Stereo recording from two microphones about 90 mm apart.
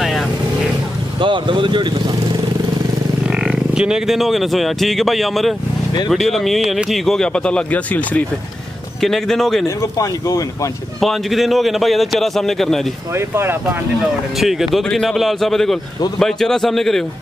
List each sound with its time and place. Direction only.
0.0 s vehicle: centre (ahead or behind)
1.2 s speech: 65° right (ahead or behind)
3.3 s speech: 10° right (ahead or behind); by 8.2 s 15° left (ahead or behind)
9.0 s a man's voice: 5° left (ahead or behind)
9.7 s speech: 40° left (ahead or behind)
11.0 s a man's voice: centre (ahead or behind)
13.1 s speech: 30° right (ahead or behind)
14.3 s a man's voice: centre (ahead or behind)